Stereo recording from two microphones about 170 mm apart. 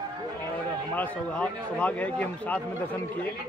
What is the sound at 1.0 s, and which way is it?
Speech, 5° left (ahead or behind).